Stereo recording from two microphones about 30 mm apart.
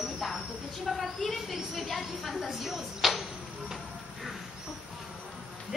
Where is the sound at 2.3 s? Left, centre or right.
Centre.